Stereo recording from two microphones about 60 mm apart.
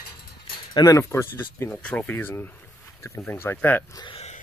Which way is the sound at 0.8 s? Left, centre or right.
Left.